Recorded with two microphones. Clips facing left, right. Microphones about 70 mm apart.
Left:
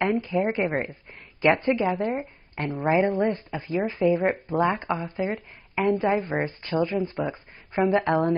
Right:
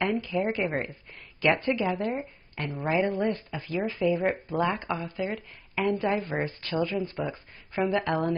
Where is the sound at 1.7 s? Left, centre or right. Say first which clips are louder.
Left 3 dB; left.